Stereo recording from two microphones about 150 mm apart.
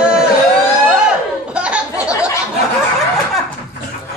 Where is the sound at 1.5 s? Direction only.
5° right (ahead or behind).